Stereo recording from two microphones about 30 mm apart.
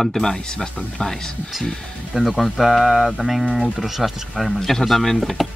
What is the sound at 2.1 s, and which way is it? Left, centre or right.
Speech, centre.